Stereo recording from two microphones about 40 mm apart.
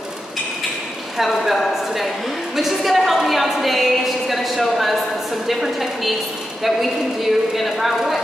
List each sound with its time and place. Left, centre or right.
1.1 s a woman's voice: centre